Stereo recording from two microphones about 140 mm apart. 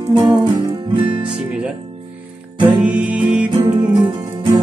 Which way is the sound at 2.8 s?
10° right (ahead or behind).